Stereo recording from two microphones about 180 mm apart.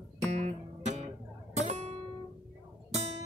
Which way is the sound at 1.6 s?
40° right (ahead or behind).